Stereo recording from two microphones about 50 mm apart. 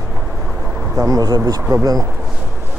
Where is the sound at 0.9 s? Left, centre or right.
Right.